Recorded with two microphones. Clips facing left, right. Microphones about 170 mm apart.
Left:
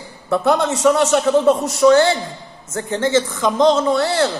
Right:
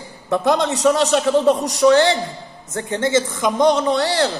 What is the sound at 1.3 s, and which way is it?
Speech, 15° right (ahead or behind).